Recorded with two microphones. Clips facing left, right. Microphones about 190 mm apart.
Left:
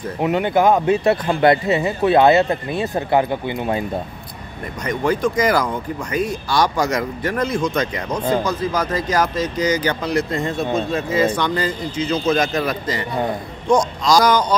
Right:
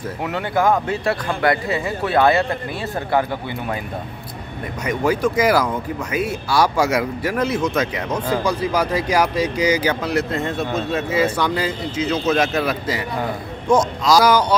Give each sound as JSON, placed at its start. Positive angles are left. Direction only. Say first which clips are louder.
{"t": 0.2, "sound": "speech", "louder": "left 4 dB", "side_deg": 20}
{"t": 4.8, "sound": "speech", "louder": "even", "side_deg": -10}